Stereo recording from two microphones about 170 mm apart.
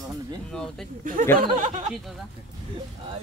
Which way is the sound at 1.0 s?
50° right (ahead or behind).